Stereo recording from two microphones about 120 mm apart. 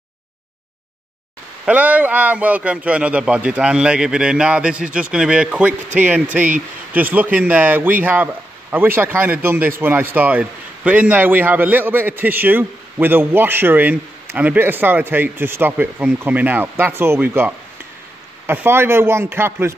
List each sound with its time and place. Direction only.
1.7 s speech: 15° right (ahead or behind)